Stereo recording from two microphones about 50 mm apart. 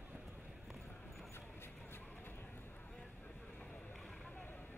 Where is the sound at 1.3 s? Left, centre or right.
Left.